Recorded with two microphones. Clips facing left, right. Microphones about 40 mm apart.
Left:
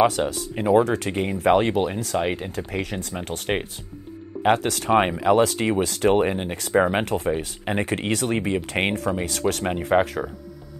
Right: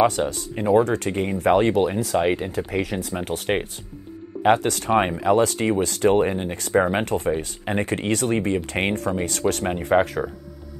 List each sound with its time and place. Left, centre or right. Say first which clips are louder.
0.2 s speech: even; centre
6.1 s speech: right 1 dB; centre
6.5 s speech: left 1 dB; centre